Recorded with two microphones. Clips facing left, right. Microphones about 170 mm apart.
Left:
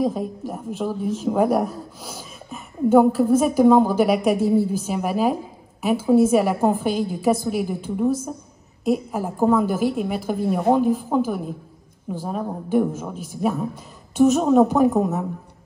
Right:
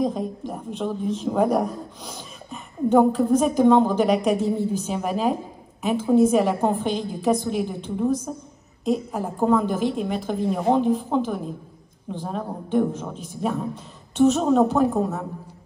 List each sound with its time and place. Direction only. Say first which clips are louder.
0.0 s a woman's voice: left 1 dB; 5° left (ahead or behind)